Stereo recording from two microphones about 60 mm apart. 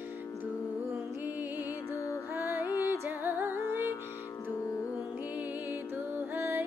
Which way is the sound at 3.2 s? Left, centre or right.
Right.